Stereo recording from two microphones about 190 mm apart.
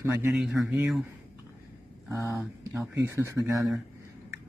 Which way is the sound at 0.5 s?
Centre (ahead or behind).